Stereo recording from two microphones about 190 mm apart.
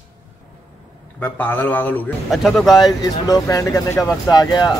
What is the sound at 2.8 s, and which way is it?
Speech, 20° left (ahead or behind).